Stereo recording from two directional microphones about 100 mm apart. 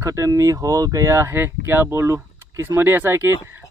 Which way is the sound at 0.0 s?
30° right (ahead or behind).